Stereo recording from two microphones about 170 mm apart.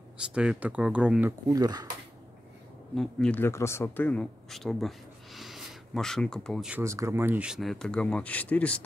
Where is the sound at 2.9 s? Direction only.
5° left (ahead or behind).